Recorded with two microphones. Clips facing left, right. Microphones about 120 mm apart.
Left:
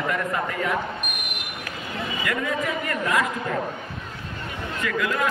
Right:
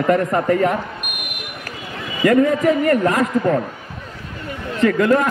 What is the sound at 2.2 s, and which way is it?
A man's voice, 45° right (ahead or behind).